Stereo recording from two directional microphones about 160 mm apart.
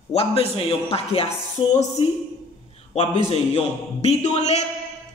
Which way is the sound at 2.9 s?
35° left (ahead or behind).